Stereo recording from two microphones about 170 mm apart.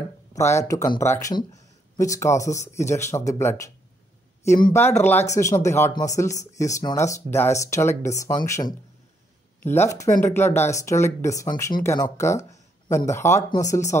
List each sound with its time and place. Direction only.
0.3 s speech: 15° left (ahead or behind)
4.7 s speech: 15° left (ahead or behind)